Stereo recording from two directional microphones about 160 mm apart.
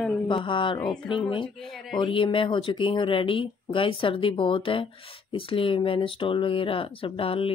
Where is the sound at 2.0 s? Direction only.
30° left (ahead or behind).